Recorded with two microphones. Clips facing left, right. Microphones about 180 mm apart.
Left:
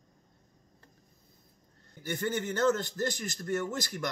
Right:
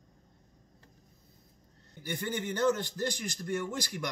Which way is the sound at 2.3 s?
15° right (ahead or behind).